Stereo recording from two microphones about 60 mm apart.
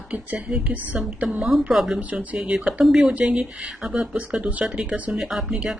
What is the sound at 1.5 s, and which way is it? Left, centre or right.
Speech, centre.